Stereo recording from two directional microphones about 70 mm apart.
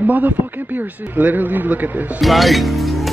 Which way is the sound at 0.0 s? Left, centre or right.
Right.